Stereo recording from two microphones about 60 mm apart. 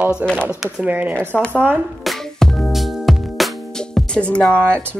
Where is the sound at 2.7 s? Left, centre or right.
Centre.